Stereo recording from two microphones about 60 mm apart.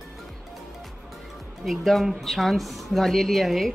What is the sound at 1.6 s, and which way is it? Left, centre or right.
A woman's voice, centre.